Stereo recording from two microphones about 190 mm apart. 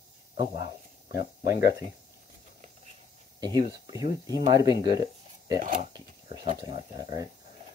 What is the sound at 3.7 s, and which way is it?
Speech, 20° right (ahead or behind).